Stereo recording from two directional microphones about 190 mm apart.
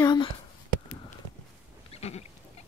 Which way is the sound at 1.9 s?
35° left (ahead or behind).